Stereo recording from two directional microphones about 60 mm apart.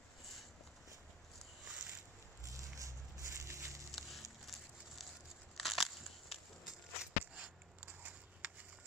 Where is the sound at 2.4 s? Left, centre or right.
Right.